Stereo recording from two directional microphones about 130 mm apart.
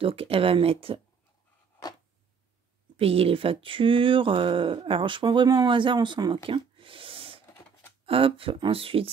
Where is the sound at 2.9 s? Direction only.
45° right (ahead or behind).